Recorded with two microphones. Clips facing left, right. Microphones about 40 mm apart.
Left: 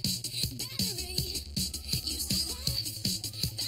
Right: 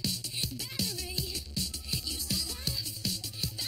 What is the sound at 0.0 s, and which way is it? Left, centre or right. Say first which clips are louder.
Music: even; centre.